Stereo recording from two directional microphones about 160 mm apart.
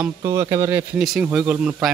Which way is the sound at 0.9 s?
5° right (ahead or behind).